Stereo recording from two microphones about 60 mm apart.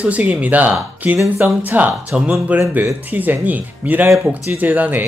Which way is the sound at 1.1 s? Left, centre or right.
Right.